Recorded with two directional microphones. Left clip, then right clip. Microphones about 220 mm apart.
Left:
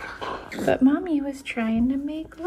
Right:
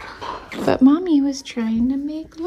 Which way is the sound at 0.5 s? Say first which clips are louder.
Right 3 dB; centre (ahead or behind).